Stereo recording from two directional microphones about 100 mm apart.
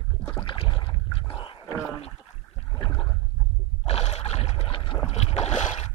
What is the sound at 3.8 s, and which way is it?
Boat, 90° left.